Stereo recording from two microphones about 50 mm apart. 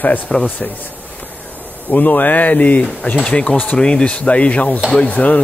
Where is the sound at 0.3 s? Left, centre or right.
Centre.